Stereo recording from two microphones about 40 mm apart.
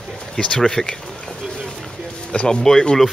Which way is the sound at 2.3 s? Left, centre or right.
Left.